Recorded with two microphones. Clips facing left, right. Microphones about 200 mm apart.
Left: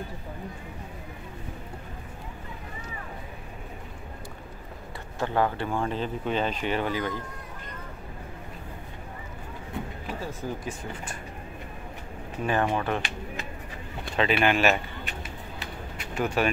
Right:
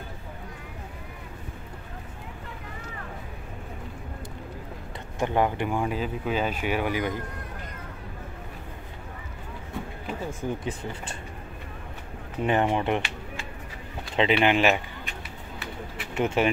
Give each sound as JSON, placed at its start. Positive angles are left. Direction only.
{"t": 5.2, "sound": "speech", "side_deg": -15}
{"t": 10.4, "sound": "speech", "side_deg": -20}
{"t": 12.4, "sound": "speech", "side_deg": -20}
{"t": 14.1, "sound": "speech", "side_deg": -20}
{"t": 16.2, "sound": "speech", "side_deg": -20}